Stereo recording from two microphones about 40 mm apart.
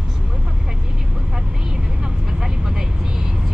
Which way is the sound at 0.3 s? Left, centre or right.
Centre.